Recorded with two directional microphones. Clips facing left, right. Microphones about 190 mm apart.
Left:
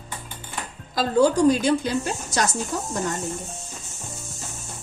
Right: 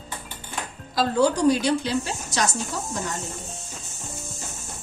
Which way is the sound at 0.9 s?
50° left (ahead or behind).